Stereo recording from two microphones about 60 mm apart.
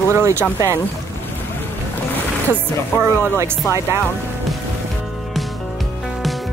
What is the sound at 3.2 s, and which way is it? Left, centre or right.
Speech, right.